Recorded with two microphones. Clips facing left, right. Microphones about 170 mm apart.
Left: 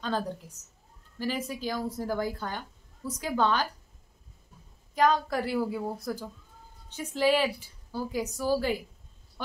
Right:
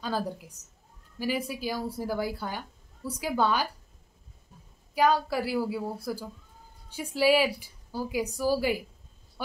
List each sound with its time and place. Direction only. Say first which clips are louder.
0.0 s a woman's voice: even; 10° right (ahead or behind)
4.9 s a woman's voice: even; 10° right (ahead or behind)